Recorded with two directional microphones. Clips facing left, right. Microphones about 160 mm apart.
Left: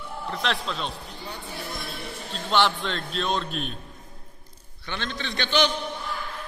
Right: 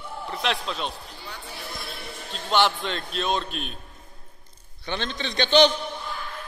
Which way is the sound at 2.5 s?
Centre (ahead or behind).